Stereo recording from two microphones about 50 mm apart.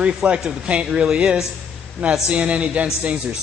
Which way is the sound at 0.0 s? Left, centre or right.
Right.